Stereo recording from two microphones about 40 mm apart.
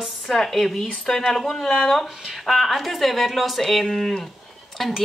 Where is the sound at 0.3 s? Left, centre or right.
Centre.